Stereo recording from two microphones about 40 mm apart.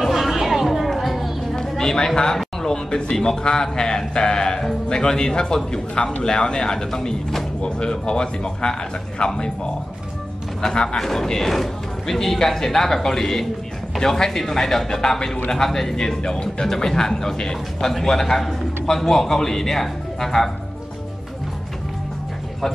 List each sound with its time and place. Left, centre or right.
0.0 s a sound: centre
1.6 s a woman's voice: centre
10.6 s a woman's voice: centre